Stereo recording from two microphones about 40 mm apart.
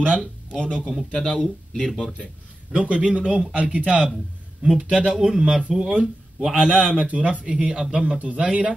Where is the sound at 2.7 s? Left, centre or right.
Right.